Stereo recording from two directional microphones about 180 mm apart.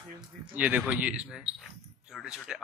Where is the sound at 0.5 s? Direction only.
10° right (ahead or behind).